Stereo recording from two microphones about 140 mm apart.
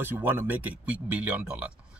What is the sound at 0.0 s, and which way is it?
A man's voice, 15° right (ahead or behind).